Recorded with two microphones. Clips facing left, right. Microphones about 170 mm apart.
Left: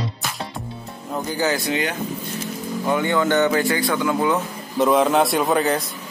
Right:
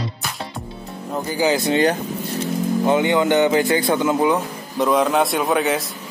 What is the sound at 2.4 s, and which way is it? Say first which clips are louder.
Speech: right 7 dB; 20° right (ahead or behind).